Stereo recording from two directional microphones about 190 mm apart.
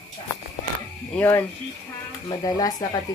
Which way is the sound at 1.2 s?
10° left (ahead or behind).